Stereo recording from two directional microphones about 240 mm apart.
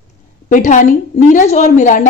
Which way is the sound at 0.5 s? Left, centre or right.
Left.